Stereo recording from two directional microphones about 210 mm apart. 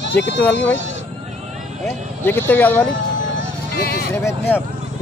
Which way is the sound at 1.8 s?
10° left (ahead or behind).